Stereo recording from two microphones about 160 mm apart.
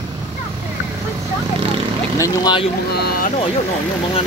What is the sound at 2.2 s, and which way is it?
Speech, 25° left (ahead or behind).